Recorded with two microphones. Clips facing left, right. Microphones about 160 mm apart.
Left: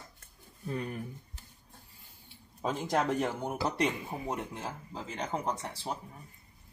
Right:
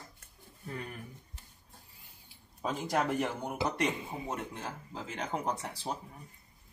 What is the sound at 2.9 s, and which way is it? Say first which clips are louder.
Speech: left 1 dB; 20° left (ahead or behind).